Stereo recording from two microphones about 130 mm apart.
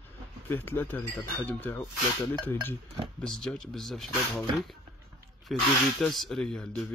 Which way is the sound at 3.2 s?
5° left (ahead or behind).